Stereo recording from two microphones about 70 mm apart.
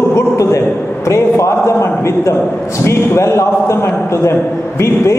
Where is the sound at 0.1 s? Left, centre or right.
Left.